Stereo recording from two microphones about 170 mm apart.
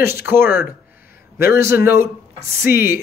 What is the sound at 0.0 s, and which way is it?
Speech, 15° right (ahead or behind).